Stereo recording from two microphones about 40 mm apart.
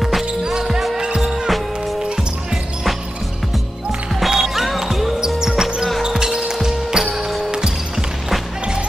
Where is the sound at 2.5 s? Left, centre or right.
Centre.